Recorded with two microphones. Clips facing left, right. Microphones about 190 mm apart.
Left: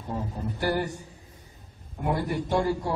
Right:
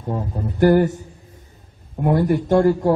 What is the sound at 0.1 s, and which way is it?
Speech, 50° right (ahead or behind).